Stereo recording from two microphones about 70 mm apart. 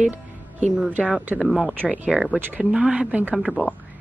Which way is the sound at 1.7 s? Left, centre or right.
Right.